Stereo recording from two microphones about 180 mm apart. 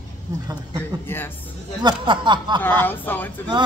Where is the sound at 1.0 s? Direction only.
10° left (ahead or behind).